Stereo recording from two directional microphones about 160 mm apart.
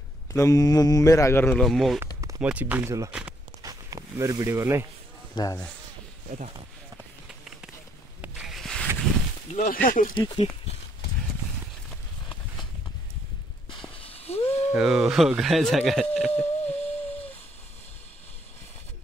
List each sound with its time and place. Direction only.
0.3 s a man's voice: 20° left (ahead or behind)
1.6 s speech: centre (ahead or behind)
2.4 s speech: 10° right (ahead or behind)
3.6 s speech: 20° right (ahead or behind)
5.3 s speech: 25° left (ahead or behind)
8.2 s rub: 5° right (ahead or behind)
9.6 s speech: 60° left (ahead or behind)
10.1 s speech: 30° left (ahead or behind)
13.7 s a sound: 30° left (ahead or behind)
14.7 s speech: 5° right (ahead or behind)
16.3 s a sound: 40° left (ahead or behind)